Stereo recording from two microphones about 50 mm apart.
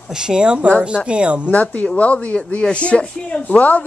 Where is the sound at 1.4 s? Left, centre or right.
Left.